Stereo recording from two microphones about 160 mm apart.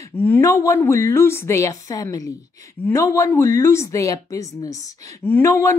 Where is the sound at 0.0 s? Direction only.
15° left (ahead or behind).